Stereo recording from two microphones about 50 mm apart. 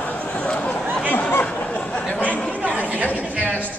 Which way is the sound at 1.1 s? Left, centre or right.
Left.